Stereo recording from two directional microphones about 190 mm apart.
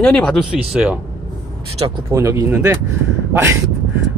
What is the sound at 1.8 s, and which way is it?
Speech, 15° right (ahead or behind).